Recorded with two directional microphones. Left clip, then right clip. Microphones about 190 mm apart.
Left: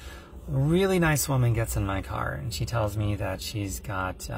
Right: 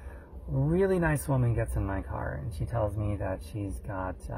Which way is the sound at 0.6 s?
25° left (ahead or behind).